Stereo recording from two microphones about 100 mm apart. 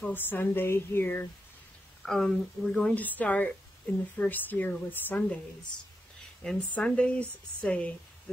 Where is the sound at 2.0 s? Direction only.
5° left (ahead or behind).